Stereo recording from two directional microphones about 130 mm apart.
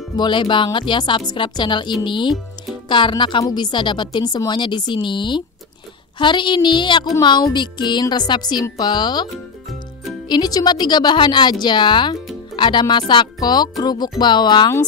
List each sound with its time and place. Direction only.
0.1 s a woman's voice: 35° left (ahead or behind)